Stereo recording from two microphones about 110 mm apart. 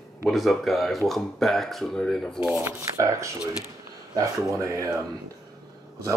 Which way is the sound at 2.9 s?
30° right (ahead or behind).